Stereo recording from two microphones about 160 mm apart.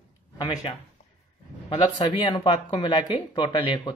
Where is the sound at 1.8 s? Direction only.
30° left (ahead or behind).